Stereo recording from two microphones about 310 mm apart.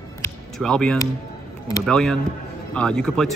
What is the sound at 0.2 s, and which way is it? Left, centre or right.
Music, centre.